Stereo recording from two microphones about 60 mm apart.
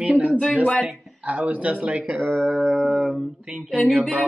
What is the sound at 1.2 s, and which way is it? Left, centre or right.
Speech, right.